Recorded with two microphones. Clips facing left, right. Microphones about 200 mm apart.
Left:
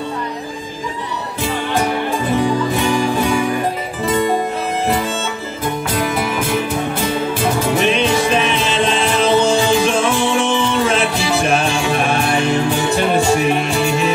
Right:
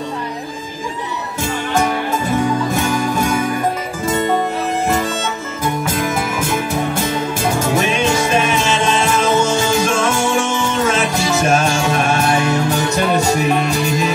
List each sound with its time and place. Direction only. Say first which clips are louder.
2.3 s music: left 1 dB; 45° right (ahead or behind)
5.9 s music: left 1 dB; 45° right (ahead or behind)